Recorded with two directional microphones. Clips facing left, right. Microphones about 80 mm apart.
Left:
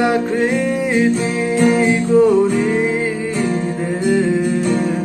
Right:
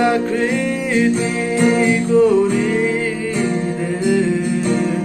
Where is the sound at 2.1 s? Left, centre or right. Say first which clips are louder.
Left 1 dB; left.